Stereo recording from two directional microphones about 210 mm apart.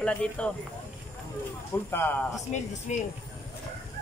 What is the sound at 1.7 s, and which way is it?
Speech, 10° left (ahead or behind).